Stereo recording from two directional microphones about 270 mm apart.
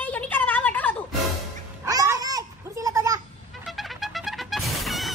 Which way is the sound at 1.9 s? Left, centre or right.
Centre.